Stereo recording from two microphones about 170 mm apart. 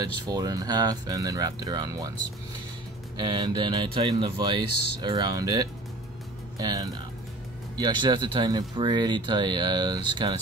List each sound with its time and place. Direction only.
0.3 s speech: 20° right (ahead or behind)
3.2 s speech: 25° right (ahead or behind)